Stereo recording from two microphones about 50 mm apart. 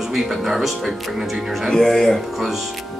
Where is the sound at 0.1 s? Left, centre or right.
Centre.